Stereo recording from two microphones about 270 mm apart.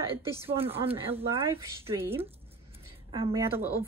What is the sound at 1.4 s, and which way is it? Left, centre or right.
A woman's voice, centre.